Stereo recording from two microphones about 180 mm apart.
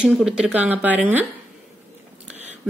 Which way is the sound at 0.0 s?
5° right (ahead or behind).